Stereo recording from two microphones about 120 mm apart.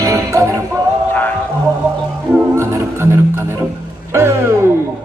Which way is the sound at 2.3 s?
20° right (ahead or behind).